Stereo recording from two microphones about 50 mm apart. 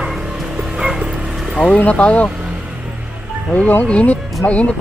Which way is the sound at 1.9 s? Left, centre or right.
Left.